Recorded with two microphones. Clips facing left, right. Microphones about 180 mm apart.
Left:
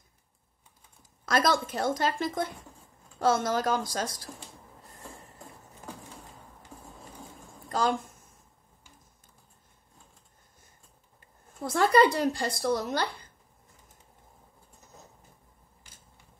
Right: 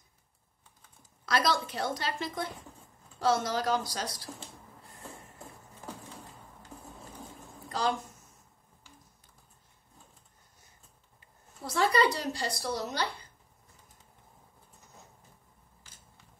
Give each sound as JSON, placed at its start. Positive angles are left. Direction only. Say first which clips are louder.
{"t": 1.2, "sound": "a woman's voice", "louder": "left 3 dB", "side_deg": 45}
{"t": 11.1, "sound": "speech", "louder": "left 9 dB", "side_deg": 50}